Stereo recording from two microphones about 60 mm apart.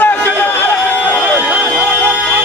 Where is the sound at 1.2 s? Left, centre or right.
Right.